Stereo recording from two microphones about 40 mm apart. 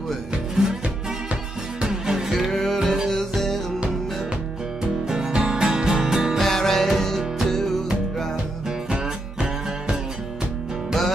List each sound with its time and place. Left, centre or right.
0.6 s music: centre
1.8 s music: centre
2.3 s music: centre
5.0 s music: centre
6.4 s music: centre